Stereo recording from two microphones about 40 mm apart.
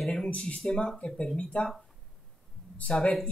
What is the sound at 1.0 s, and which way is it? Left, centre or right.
Speech, left.